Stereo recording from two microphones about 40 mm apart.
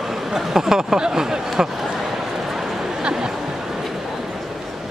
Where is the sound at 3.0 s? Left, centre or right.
Right.